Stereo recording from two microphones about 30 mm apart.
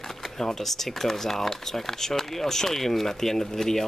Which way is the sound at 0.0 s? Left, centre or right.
Centre.